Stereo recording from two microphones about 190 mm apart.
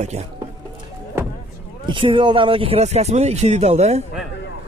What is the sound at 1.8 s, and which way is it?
Speech, 25° right (ahead or behind).